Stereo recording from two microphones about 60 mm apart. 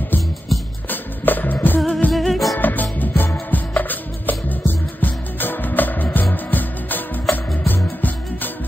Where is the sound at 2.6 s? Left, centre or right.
Left.